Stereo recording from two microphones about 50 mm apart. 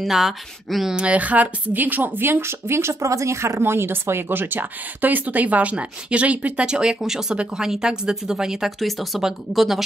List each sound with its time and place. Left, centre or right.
0.0 s speech: centre
0.9 s speech: right
8.7 s speech: centre